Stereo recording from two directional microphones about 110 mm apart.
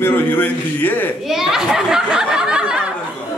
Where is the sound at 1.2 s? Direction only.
5° right (ahead or behind).